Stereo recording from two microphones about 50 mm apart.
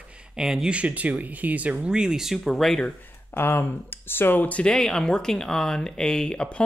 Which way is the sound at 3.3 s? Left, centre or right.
Left.